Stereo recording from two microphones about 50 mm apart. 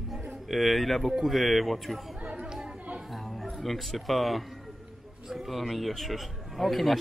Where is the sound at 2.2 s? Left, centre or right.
Centre.